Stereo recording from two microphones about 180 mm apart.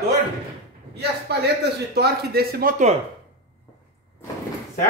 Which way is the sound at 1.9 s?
60° right (ahead or behind).